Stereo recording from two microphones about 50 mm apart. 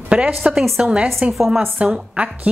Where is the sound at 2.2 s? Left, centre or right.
Right.